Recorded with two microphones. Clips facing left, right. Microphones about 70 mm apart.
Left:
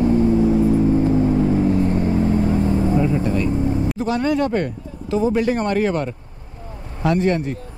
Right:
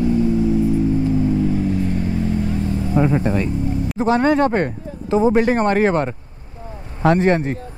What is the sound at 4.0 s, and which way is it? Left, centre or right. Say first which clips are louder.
Speech: right 6 dB; right.